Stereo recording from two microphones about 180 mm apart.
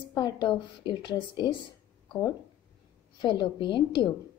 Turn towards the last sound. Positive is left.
turn(degrees=25)  # may be behind; listen again after turning